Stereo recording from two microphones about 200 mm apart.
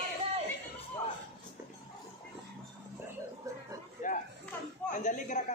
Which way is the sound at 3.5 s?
15° right (ahead or behind).